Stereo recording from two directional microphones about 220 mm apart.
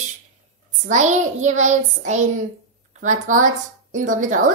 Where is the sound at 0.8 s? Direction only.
35° right (ahead or behind).